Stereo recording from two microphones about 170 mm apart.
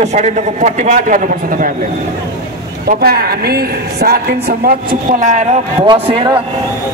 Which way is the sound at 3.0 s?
65° right (ahead or behind).